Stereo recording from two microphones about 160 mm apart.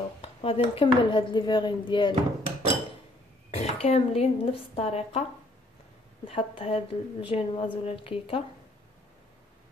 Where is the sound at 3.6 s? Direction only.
40° left (ahead or behind).